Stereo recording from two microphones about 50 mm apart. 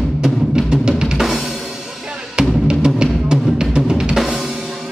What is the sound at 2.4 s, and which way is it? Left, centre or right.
Drum, centre.